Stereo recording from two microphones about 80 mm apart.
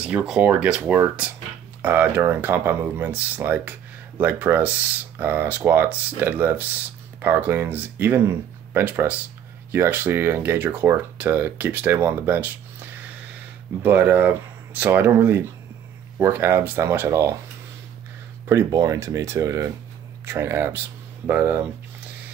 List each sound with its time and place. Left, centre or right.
0.0 s speech: centre
18.7 s speech: right; by 21.6 s centre